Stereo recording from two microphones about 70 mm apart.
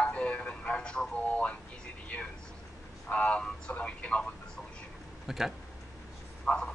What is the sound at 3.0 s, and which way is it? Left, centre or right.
A man's voice, centre.